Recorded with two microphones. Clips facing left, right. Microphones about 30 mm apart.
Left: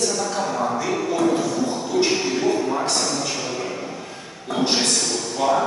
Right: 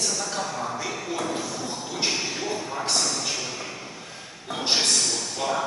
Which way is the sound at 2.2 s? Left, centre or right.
Centre.